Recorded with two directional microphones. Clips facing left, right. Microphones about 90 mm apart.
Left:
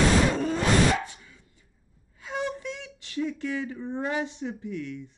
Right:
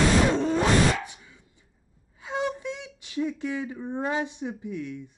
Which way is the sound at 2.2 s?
20° right (ahead or behind).